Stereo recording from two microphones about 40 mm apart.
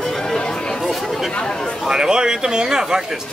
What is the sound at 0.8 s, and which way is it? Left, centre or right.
Speech, centre.